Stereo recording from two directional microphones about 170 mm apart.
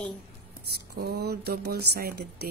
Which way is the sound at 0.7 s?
70° right (ahead or behind).